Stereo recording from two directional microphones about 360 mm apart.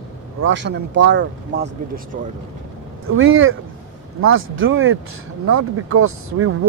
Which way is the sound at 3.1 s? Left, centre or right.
Right.